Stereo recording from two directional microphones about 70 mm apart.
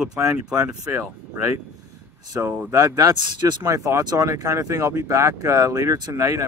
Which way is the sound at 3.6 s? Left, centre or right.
Right.